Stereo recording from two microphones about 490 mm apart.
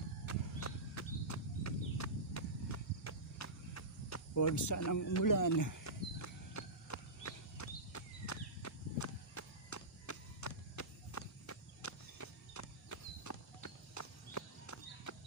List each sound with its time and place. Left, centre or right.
0.3 s horse: left